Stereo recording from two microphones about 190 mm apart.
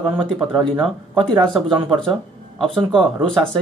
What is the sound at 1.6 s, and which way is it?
Speech, 25° right (ahead or behind).